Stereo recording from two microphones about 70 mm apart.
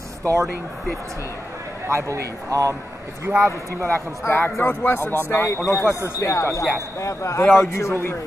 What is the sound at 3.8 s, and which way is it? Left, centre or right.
A man's voice, left.